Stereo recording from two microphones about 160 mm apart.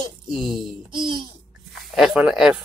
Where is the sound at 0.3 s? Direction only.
Centre (ahead or behind).